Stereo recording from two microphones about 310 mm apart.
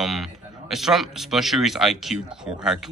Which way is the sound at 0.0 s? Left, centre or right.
Centre.